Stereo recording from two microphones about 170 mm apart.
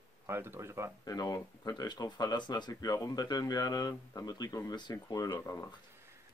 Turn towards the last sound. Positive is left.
turn(degrees=20)  # may be behind; listen again after turning